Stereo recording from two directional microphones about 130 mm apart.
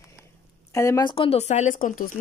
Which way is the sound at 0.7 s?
20° left (ahead or behind).